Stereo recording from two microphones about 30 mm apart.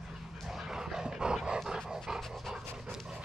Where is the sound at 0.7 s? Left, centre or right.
Centre.